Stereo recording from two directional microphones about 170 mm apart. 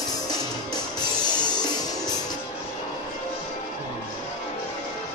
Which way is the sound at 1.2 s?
25° left (ahead or behind).